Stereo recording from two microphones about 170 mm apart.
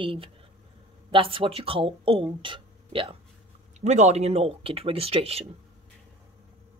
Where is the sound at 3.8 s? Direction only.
45° right (ahead or behind).